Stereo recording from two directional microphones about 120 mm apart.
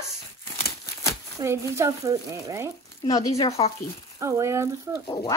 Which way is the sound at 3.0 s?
35° left (ahead or behind).